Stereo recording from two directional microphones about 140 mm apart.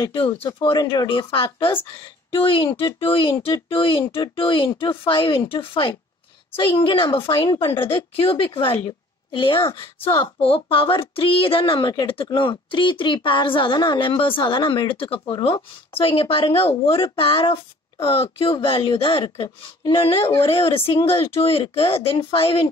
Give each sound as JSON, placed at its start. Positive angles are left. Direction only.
{"t": 0.0, "sound": "speech", "side_deg": 40}
{"t": 10.4, "sound": "speech", "side_deg": 40}